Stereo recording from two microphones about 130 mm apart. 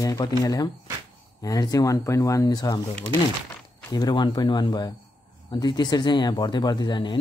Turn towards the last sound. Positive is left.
turn(degrees=35)  # may be behind; listen again after turning